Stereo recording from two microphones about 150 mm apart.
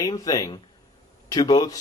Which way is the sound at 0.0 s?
25° left (ahead or behind).